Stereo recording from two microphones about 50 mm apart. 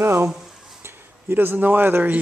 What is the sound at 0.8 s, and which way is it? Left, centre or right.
Speech, right.